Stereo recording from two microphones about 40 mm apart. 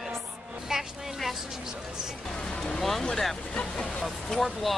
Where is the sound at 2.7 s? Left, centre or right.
Centre.